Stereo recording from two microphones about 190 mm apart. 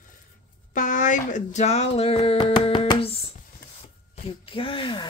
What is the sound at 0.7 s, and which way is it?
Speech, 40° left (ahead or behind).